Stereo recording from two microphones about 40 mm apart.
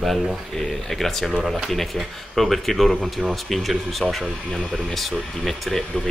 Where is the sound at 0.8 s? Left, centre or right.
Centre.